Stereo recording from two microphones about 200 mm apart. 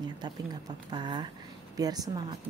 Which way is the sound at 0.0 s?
20° right (ahead or behind).